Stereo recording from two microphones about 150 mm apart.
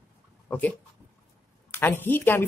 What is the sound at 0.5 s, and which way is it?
A woman's voice, 10° left (ahead or behind).